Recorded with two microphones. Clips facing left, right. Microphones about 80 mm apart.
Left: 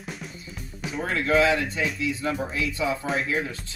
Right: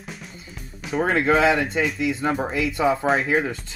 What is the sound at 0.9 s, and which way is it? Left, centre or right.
Speech, right.